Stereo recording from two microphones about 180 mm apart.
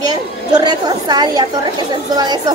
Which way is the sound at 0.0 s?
20° right (ahead or behind).